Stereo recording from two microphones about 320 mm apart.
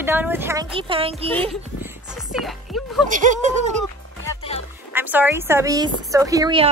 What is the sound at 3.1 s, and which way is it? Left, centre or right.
Speech, right.